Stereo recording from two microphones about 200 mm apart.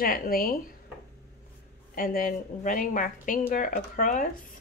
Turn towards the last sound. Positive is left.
turn(degrees=40)  # may be behind; listen again after turning